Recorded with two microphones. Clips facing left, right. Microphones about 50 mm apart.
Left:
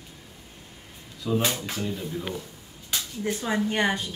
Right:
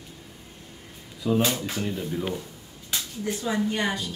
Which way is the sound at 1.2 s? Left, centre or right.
Centre.